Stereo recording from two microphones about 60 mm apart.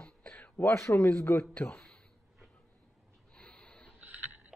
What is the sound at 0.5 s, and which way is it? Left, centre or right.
Speech, left.